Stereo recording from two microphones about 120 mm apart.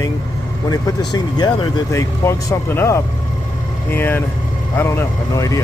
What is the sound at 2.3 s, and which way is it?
Speech, 20° left (ahead or behind).